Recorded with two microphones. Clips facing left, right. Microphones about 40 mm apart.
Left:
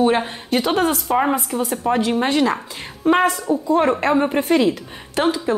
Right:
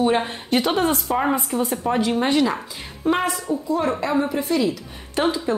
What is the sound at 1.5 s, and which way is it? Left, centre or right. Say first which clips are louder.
Speech: left 2 dB; centre.